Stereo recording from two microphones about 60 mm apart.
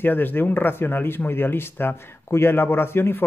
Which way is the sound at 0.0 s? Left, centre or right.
Left.